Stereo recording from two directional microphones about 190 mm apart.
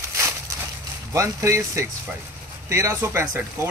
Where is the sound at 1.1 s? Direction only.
15° right (ahead or behind).